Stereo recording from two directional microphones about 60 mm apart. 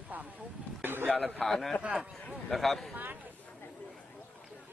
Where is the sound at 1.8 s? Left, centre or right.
Centre.